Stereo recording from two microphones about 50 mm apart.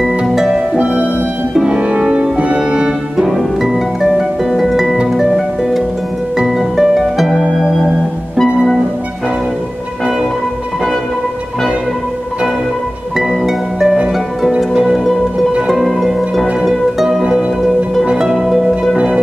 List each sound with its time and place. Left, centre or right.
0.3 s harp: centre
0.7 s music: right
3.2 s harp: centre
13.3 s music: centre
14.7 s music: centre
15.7 s music: centre